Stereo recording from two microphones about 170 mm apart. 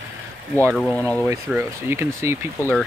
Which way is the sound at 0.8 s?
5° left (ahead or behind).